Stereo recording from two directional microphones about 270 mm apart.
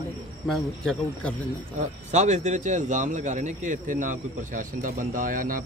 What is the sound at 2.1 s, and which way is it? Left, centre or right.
A man's voice, right.